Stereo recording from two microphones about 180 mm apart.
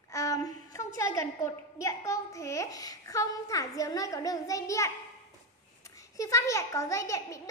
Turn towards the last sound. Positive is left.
turn(degrees=15)  # may be behind; listen again after turning